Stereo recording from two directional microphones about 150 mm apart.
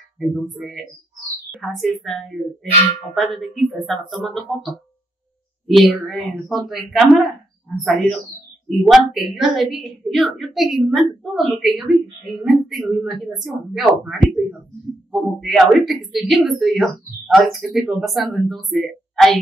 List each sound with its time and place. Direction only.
0.3 s speech: centre (ahead or behind)
5.8 s speech: centre (ahead or behind)